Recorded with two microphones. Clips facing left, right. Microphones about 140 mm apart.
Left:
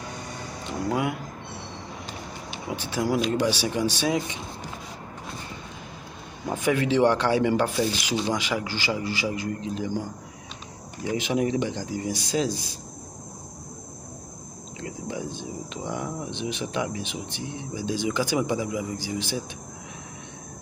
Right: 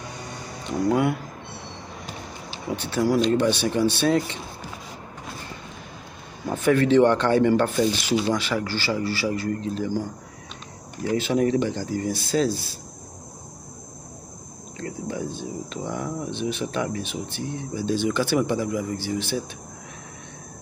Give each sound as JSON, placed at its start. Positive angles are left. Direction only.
{"t": 0.8, "sound": "speech", "side_deg": 5}
{"t": 2.9, "sound": "speech", "side_deg": 15}
{"t": 6.4, "sound": "speech", "side_deg": 15}
{"t": 11.1, "sound": "speech", "side_deg": 15}
{"t": 14.8, "sound": "speech", "side_deg": 15}